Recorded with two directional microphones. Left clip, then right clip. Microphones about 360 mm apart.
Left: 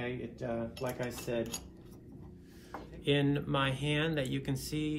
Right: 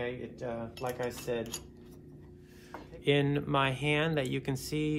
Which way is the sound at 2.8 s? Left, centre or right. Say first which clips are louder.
Right 3 dB; centre.